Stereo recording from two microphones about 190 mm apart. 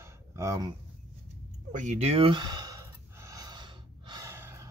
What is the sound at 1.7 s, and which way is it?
Gasp, 40° right (ahead or behind).